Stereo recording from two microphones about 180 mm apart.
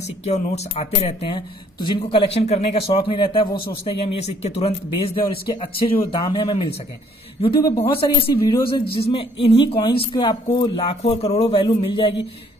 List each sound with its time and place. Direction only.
0.2 s speech: 35° left (ahead or behind)
7.8 s speech: 30° left (ahead or behind)